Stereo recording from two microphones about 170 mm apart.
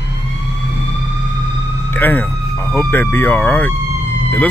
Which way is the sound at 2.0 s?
10° left (ahead or behind).